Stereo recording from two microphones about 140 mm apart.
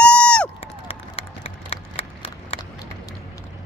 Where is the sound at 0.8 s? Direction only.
45° left (ahead or behind).